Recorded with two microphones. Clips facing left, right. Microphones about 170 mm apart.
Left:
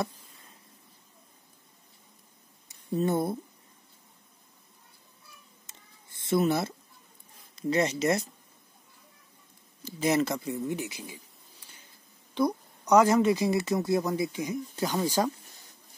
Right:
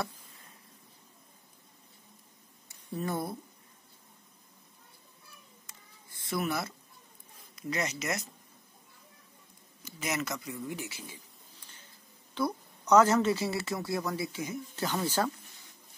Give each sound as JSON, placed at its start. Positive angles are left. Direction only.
{"t": 2.7, "sound": "speech", "side_deg": 25}
{"t": 5.7, "sound": "cat", "side_deg": 25}
{"t": 7.5, "sound": "speech", "side_deg": 30}
{"t": 9.8, "sound": "speech", "side_deg": 30}
{"t": 11.6, "sound": "a sound", "side_deg": 10}
{"t": 12.4, "sound": "a woman's voice", "side_deg": 15}